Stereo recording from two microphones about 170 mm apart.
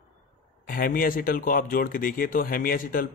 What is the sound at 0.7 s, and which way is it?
Speech, 55° left (ahead or behind).